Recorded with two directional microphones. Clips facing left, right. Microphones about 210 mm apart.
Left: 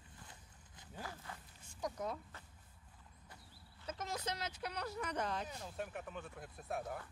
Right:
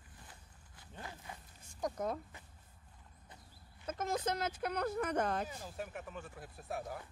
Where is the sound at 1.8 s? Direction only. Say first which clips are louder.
Right 4 dB; 50° right (ahead or behind).